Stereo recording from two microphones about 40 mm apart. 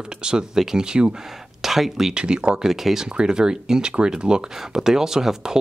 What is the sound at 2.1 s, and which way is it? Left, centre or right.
Speech, right.